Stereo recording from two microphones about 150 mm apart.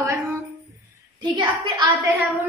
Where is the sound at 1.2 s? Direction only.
30° right (ahead or behind).